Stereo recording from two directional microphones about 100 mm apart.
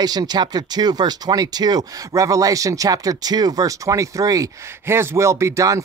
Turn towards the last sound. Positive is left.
turn(degrees=-30)  # may be behind; listen again after turning